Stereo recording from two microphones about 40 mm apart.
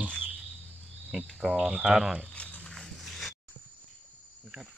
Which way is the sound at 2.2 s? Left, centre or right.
Left.